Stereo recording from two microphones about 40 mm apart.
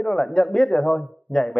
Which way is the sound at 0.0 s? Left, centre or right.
Centre.